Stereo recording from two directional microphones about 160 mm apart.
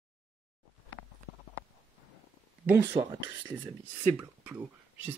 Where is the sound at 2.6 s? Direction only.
15° right (ahead or behind).